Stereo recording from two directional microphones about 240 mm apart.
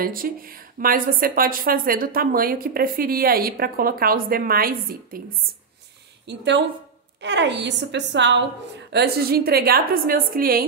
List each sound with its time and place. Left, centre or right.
0.0 s a woman's voice: right